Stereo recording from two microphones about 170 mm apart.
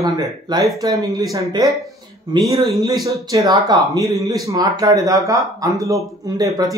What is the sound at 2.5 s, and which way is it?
Speech, centre (ahead or behind).